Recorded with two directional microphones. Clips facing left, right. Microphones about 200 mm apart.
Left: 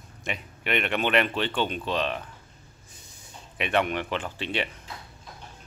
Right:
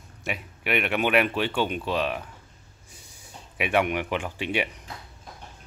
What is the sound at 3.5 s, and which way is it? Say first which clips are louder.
Speech: right 2 dB; 10° right (ahead or behind).